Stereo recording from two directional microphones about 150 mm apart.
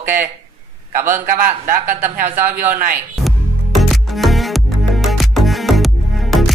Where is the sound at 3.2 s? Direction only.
Centre (ahead or behind).